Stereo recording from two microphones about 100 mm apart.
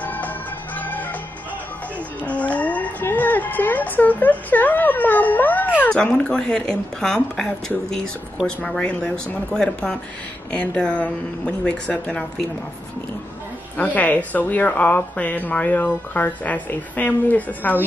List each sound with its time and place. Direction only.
0.0 s organ: 15° left (ahead or behind)
2.2 s a sound: 15° left (ahead or behind)
5.9 s speech: 10° left (ahead or behind)
13.7 s speech: 15° left (ahead or behind)